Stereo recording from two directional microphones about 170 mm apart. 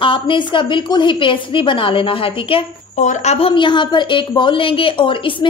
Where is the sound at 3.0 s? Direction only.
45° left (ahead or behind).